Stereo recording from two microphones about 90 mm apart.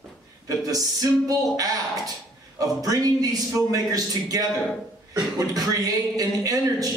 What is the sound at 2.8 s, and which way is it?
A man's voice, 40° right (ahead or behind).